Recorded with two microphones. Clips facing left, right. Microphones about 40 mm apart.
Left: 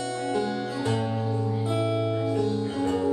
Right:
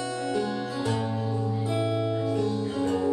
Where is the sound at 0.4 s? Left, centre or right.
Left.